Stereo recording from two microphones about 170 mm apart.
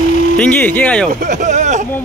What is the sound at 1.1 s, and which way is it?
Speech, 50° right (ahead or behind).